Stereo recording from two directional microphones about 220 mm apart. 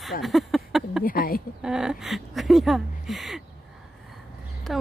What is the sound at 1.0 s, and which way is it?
Speech, 40° left (ahead or behind).